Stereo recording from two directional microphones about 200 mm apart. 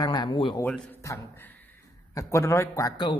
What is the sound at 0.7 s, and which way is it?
A man's voice, 10° left (ahead or behind).